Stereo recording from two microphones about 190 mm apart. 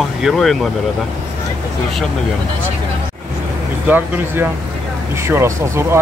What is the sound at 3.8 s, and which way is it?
Speech, 10° right (ahead or behind).